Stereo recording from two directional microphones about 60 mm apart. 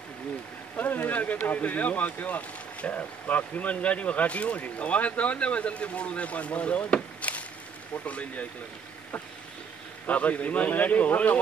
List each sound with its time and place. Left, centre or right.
0.7 s speech: left
10.0 s speech: left